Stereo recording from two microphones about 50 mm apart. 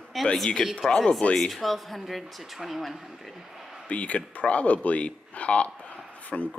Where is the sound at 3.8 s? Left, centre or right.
Left.